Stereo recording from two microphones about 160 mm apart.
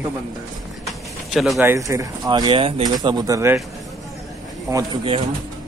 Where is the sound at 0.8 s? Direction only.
Centre (ahead or behind).